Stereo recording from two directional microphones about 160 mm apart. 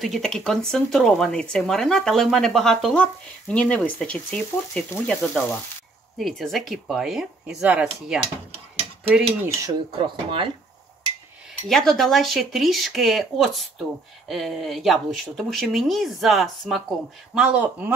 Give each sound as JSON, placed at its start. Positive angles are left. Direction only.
{"t": 0.0, "sound": "speech", "side_deg": 0}
{"t": 6.1, "sound": "speech", "side_deg": 0}
{"t": 9.6, "sound": "speech", "side_deg": -30}
{"t": 11.7, "sound": "speech", "side_deg": 0}